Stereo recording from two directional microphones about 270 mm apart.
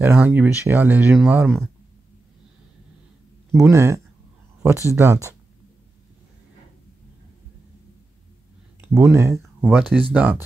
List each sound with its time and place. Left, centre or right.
0.0 s speech: centre
3.5 s speech: centre
8.8 s speech: centre